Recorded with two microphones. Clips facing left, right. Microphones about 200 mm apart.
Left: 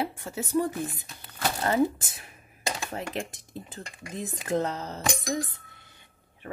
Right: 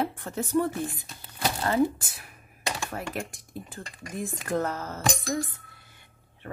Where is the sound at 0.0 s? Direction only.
10° left (ahead or behind).